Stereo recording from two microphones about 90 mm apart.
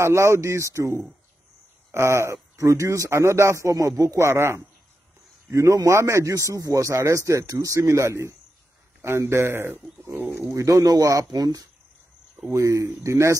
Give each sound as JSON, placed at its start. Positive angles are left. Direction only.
{"t": 0.0, "sound": "speech", "side_deg": -30}
{"t": 10.5, "sound": "speech", "side_deg": -40}